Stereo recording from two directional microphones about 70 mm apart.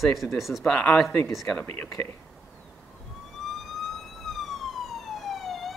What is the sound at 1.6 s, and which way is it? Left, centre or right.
Speech, left.